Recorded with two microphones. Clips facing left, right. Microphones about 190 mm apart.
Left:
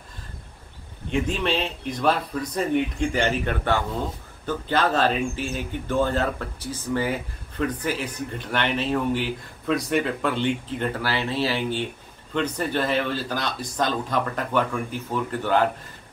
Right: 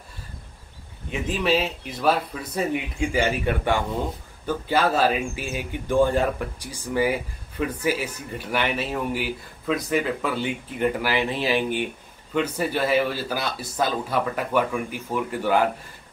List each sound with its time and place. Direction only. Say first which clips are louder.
1.1 s speech: right 1 dB; 5° right (ahead or behind)